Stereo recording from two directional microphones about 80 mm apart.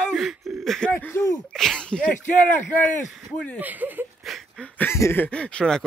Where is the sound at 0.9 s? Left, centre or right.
Left.